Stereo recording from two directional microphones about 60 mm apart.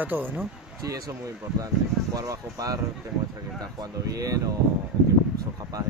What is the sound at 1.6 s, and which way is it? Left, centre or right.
Speech, right.